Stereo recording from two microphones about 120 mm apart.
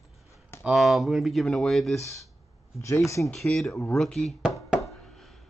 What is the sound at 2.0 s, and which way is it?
Speech, 25° left (ahead or behind).